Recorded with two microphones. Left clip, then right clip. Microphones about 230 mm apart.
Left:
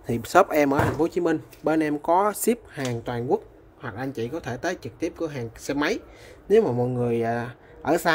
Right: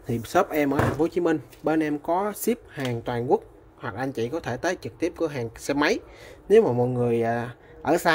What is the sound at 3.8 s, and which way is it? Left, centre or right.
Speech, centre.